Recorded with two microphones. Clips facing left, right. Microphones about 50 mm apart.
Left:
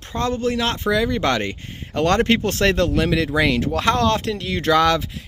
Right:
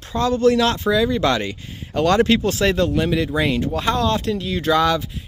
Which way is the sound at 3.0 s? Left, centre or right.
Left.